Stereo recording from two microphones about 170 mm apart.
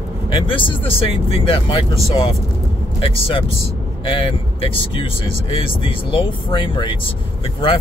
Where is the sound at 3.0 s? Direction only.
35° left (ahead or behind).